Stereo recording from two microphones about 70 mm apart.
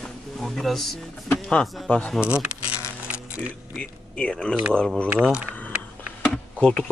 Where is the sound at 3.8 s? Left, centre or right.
Centre.